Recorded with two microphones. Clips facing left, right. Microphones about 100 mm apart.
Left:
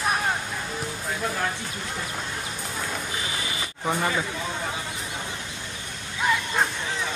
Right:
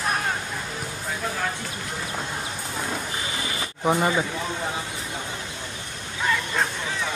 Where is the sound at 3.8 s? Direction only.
15° right (ahead or behind).